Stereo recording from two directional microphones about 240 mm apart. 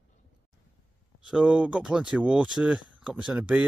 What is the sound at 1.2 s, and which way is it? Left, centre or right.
Speech, centre.